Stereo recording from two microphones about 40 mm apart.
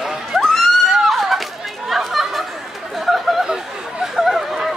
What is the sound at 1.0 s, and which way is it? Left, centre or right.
Chatter, centre.